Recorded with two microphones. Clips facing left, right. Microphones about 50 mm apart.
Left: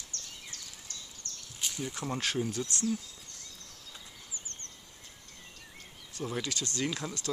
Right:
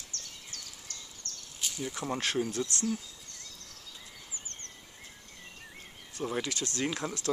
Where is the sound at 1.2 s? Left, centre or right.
Left.